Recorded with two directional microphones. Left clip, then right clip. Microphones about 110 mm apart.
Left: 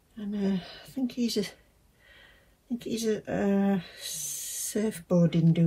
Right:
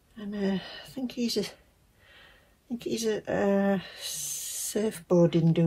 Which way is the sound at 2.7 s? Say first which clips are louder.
Even; 45° right (ahead or behind).